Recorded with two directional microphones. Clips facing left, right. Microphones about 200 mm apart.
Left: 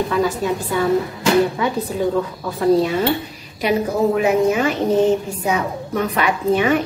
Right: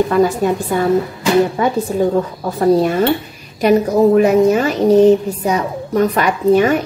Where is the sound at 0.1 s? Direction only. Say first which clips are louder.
Right 5 dB; 50° right (ahead or behind).